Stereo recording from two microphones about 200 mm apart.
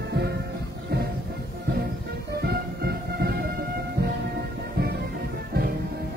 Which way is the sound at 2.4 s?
50° right (ahead or behind).